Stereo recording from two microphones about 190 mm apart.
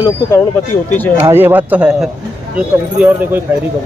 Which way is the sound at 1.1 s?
10° right (ahead or behind).